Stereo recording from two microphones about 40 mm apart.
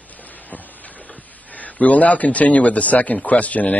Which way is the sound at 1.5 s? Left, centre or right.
Left.